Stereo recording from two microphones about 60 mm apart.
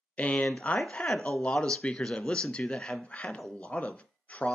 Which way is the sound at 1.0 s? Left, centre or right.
Centre.